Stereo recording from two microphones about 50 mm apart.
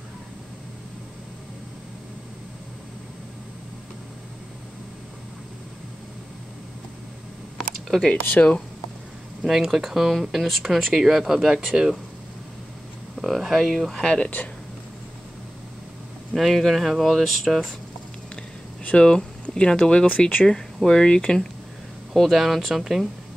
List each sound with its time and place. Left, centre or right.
8.3 s speech: left
9.4 s speech: centre
13.2 s speech: centre
14.0 s speech: centre
16.3 s speech: centre
18.9 s speech: left
20.4 s speech: centre
22.1 s speech: centre